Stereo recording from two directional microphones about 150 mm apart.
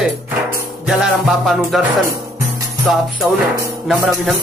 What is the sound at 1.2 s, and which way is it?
Speech, centre (ahead or behind).